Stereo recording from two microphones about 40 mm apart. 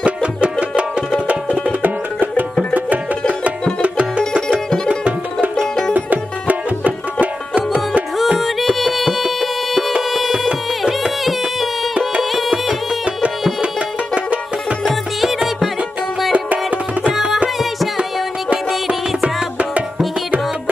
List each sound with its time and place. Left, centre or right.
0.0 s music: right
1.3 s music: right
4.8 s music: right
5.6 s music: centre
5.9 s music: right
8.4 s music: centre
11.2 s music: centre
13.6 s music: right
16.3 s music: right
19.2 s music: right